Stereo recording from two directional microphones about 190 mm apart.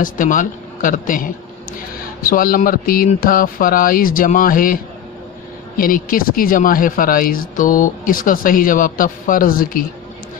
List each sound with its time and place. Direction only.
0.0 s a man's voice: 45° left (ahead or behind)
5.8 s speech: 45° left (ahead or behind)